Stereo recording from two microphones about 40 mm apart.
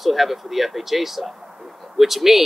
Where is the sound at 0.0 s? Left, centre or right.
Centre.